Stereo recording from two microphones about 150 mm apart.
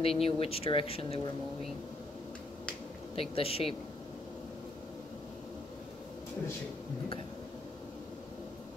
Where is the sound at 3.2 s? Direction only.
40° left (ahead or behind).